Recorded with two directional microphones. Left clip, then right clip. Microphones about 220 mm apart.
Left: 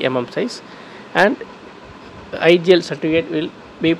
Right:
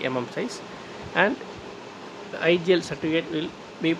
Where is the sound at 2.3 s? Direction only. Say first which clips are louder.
Left 9 dB; 25° left (ahead or behind).